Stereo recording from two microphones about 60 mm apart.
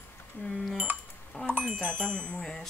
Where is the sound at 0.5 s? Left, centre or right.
Centre.